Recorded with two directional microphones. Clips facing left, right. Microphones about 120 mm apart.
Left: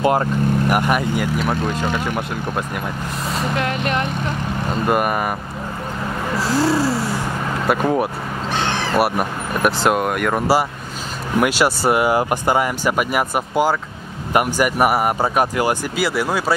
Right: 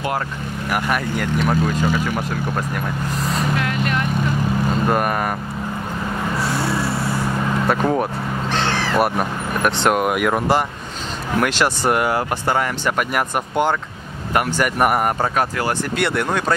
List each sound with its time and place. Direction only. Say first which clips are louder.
0.7 s speech: left 4 dB; 10° left (ahead or behind); by 2.0 s 5° right (ahead or behind)
3.6 s speech: left 1 dB; 25° left (ahead or behind)
4.8 s speech: left 3 dB; 5° left (ahead or behind)
6.4 s vehicle: left 7 dB; 90° left
7.6 s speech: left 2 dB; 5° left (ahead or behind)
9.9 s speech: right 1 dB; 5° right (ahead or behind)
11.3 s speech: left 2 dB; 10° left (ahead or behind)